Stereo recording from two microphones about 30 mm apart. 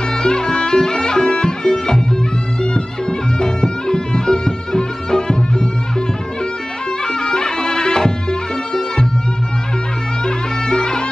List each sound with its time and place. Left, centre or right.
0.2 s music: left
7.1 s music: left
10.2 s music: left